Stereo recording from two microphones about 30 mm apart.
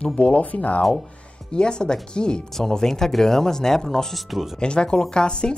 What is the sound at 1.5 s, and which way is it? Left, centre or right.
Speech, left.